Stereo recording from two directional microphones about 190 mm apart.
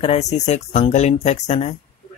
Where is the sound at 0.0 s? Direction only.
35° left (ahead or behind).